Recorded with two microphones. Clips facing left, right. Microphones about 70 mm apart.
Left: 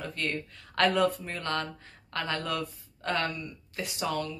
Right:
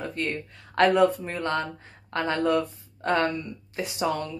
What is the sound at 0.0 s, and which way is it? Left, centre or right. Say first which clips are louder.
Speech: right 3 dB; right.